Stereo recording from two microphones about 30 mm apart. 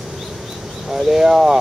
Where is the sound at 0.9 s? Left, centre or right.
Centre.